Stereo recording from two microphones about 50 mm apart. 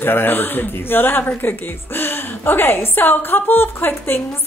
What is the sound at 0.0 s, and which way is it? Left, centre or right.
A woman's voice, left.